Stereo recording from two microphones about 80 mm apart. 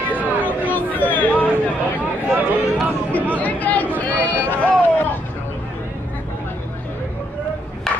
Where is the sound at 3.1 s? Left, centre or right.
Centre.